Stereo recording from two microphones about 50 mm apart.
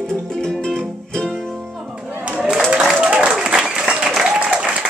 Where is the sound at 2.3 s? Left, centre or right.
Centre.